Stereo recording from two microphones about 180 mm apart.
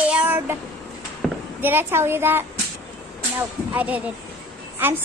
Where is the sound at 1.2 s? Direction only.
Centre (ahead or behind).